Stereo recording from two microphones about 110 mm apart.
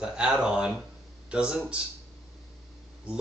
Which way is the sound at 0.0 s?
10° right (ahead or behind).